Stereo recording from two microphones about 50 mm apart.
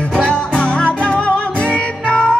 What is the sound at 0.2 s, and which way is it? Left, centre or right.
Music, centre.